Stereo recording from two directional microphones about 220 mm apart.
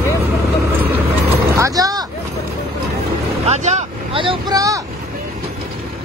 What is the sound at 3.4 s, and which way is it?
Vehicle, 30° right (ahead or behind).